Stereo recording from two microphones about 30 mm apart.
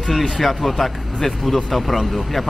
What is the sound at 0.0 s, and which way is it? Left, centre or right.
Speech, centre.